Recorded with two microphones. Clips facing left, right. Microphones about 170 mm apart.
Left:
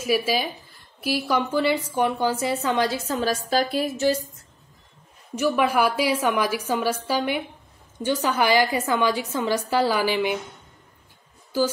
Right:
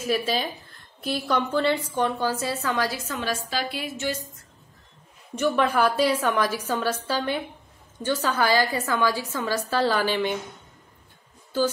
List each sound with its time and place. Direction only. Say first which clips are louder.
0.0 s a woman's voice: left 2 dB; 10° left (ahead or behind)
3.1 s a woman's voice: left 5 dB; 40° left (ahead or behind)
5.3 s a woman's voice: left 1 dB; 10° left (ahead or behind)